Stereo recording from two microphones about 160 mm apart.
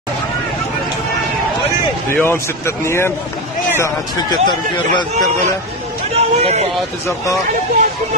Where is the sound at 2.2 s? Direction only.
15° left (ahead or behind).